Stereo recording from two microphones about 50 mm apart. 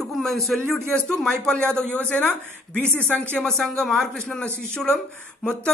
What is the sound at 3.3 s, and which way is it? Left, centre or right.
A woman's voice, centre.